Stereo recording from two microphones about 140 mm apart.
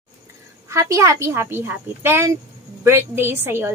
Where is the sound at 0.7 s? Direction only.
20° right (ahead or behind).